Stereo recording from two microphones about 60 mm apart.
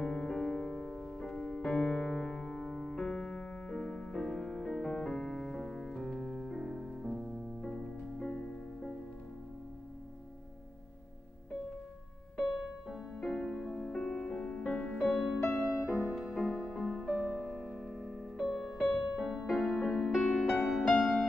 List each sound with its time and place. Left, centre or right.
0.0 s music: centre
7.6 s music: centre
12.4 s music: centre
13.3 s music: centre
15.0 s music: centre
16.3 s music: centre
19.8 s music: centre
20.1 s music: centre